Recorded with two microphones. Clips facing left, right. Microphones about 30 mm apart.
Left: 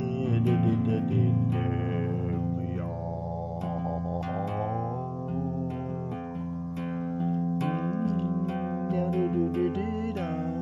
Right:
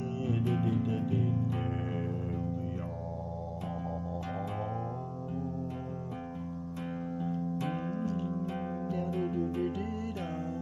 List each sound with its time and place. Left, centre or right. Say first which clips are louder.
0.2 s music: left 5 dB; left
7.9 s music: left 5 dB; left
8.3 s music: left 5 dB; centre
8.8 s music: left 7 dB; left
9.2 s music: left 6 dB; left
9.5 s music: left 5 dB; left